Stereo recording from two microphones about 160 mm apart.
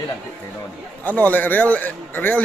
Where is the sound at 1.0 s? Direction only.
10° left (ahead or behind).